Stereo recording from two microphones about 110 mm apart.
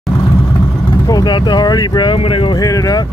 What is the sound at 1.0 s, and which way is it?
Speech, 40° left (ahead or behind).